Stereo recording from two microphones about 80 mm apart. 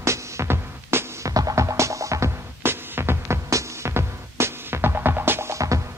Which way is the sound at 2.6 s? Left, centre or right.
Right.